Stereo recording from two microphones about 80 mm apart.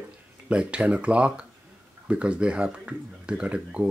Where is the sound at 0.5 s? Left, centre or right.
Centre.